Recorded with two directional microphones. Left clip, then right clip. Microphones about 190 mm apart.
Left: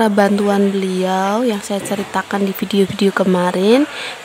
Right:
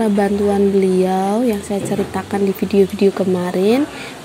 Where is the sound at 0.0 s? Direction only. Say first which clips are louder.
Left 2 dB; 20° left (ahead or behind).